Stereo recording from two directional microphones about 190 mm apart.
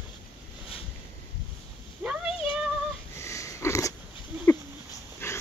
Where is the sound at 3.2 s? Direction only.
15° left (ahead or behind).